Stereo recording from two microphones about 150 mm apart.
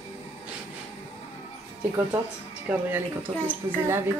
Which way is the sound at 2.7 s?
10° right (ahead or behind).